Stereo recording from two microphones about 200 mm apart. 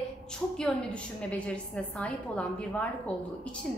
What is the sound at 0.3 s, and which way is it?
A woman's voice, 5° left (ahead or behind).